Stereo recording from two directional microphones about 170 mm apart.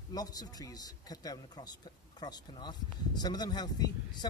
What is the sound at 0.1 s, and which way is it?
Speech, 20° left (ahead or behind).